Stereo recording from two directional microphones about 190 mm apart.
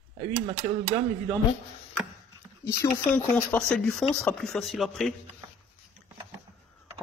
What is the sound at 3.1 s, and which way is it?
Speech, 10° left (ahead or behind).